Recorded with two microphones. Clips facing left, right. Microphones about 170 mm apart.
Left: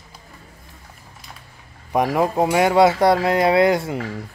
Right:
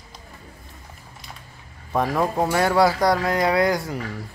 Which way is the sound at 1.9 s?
15° left (ahead or behind).